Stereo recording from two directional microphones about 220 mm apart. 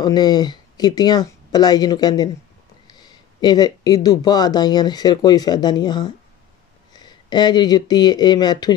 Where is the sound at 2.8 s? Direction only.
20° left (ahead or behind).